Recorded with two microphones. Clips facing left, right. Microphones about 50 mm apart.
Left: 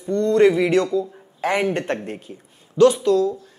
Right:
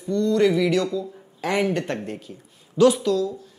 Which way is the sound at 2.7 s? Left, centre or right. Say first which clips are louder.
Left 2 dB; centre.